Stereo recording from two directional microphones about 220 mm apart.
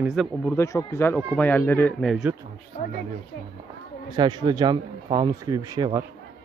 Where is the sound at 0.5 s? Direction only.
15° left (ahead or behind).